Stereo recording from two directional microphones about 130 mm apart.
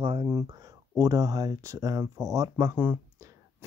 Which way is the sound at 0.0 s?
40° right (ahead or behind).